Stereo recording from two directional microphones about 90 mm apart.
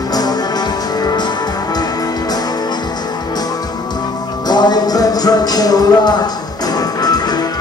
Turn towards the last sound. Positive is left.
turn(degrees=45)  # may be behind; listen again after turning